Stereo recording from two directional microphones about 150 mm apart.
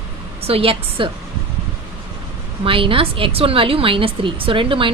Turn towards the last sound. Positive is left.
turn(degrees=-35)  # may be behind; listen again after turning